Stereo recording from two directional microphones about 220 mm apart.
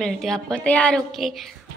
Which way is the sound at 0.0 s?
Centre (ahead or behind).